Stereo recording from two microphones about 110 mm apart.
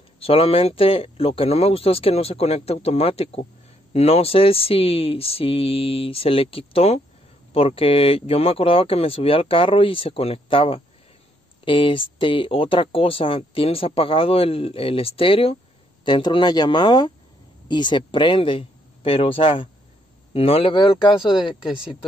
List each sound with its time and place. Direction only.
0.2 s speech: 60° left (ahead or behind)
16.0 s speech: 45° left (ahead or behind)